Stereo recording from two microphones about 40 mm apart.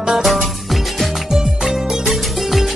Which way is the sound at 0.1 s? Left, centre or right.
Centre.